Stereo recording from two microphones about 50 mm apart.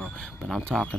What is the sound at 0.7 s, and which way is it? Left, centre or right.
Speech, centre.